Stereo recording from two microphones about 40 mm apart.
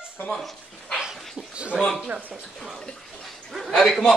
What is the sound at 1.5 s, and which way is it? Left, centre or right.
Speech, right.